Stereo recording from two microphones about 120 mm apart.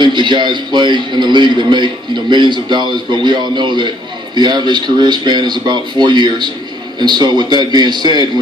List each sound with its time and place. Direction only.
0.0 s a man's voice: 40° right (ahead or behind)